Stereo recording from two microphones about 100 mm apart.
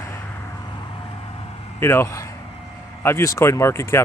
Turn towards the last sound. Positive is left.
turn(degrees=25)  # may be behind; listen again after turning